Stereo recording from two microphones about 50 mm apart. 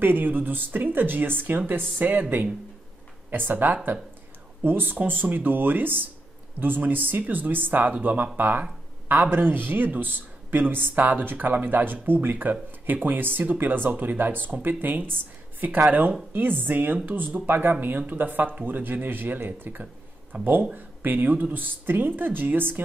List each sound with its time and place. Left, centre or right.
0.0 s speech: right
16.3 s speech: right
20.3 s speech: right
20.7 s speech: right